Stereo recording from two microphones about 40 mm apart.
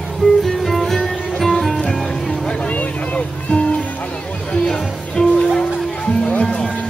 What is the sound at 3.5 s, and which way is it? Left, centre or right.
Music, left.